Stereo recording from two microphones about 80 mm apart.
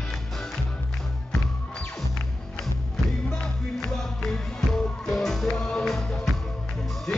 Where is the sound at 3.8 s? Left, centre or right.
Centre.